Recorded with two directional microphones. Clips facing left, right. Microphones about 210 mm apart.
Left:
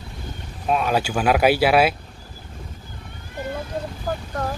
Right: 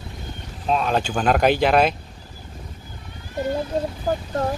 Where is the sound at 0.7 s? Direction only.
5° left (ahead or behind).